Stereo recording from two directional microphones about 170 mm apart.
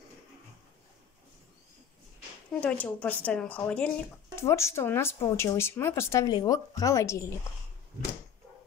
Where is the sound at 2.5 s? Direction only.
10° left (ahead or behind).